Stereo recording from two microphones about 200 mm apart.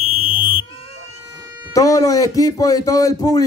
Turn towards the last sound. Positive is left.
turn(degrees=20)  # may be behind; listen again after turning